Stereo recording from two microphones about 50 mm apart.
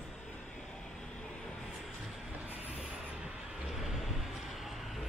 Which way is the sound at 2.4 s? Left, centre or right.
Right.